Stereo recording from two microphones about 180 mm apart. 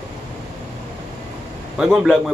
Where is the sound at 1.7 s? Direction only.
5° right (ahead or behind).